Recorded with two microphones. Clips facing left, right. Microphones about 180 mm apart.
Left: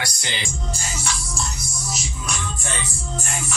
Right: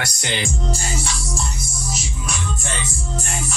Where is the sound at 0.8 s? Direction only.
30° right (ahead or behind).